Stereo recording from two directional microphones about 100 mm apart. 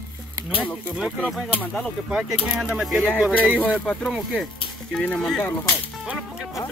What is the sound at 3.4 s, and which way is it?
Speech, 15° left (ahead or behind).